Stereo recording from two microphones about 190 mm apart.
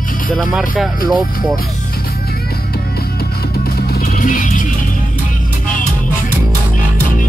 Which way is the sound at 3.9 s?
50° left (ahead or behind).